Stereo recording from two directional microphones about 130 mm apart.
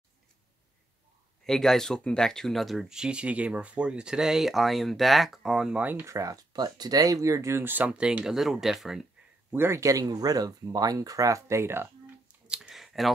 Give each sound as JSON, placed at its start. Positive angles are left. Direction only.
{"t": 1.4, "sound": "speech", "side_deg": 5}
{"t": 9.5, "sound": "speech", "side_deg": -20}
{"t": 12.4, "sound": "a sound", "side_deg": 0}